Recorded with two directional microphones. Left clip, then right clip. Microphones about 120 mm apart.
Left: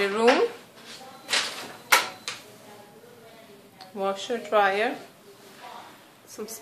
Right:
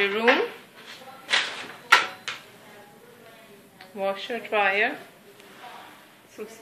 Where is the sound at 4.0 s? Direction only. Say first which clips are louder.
Even; 50° left (ahead or behind).